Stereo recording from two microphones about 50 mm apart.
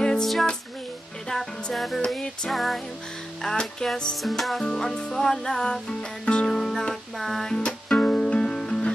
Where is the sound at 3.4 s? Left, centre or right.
Centre.